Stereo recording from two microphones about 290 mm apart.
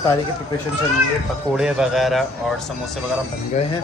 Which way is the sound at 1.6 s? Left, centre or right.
Centre.